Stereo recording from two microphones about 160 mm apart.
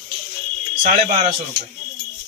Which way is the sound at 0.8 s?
55° right (ahead or behind).